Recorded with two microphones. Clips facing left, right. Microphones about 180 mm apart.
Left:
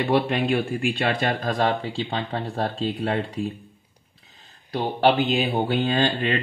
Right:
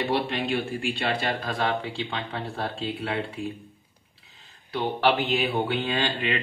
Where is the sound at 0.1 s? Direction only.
55° left (ahead or behind).